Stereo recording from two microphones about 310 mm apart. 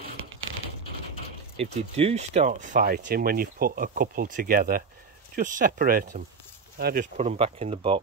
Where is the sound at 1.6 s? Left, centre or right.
Centre.